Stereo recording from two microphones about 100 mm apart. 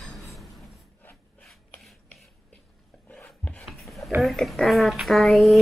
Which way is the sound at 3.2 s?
15° left (ahead or behind).